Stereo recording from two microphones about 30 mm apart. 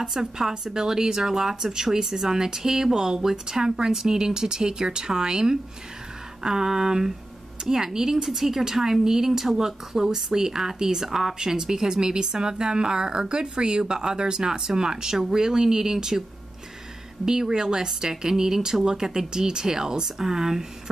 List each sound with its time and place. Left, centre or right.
0.0 s speech: centre
11.3 s speech: right